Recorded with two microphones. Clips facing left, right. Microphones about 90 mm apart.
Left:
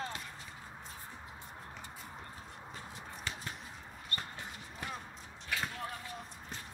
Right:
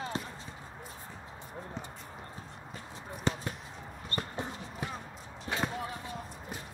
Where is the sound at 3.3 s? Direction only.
30° right (ahead or behind).